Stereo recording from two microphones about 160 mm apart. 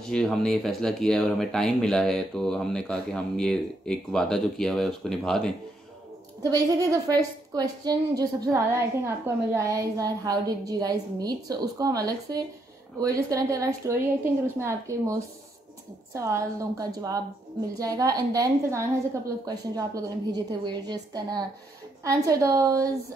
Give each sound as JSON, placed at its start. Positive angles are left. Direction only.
{"t": 0.0, "sound": "speech", "side_deg": 5}
{"t": 6.5, "sound": "a woman's voice", "side_deg": -20}